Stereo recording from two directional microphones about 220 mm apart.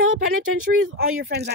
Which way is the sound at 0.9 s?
45° right (ahead or behind).